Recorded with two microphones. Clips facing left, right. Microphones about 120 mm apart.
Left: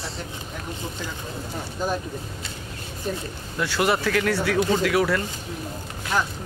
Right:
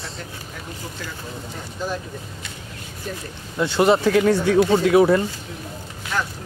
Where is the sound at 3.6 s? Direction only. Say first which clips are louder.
Right 6 dB; 25° right (ahead or behind).